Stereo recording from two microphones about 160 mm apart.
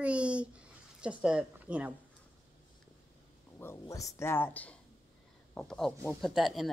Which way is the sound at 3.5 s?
15° left (ahead or behind).